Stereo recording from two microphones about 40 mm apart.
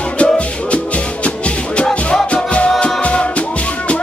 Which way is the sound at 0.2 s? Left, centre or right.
Left.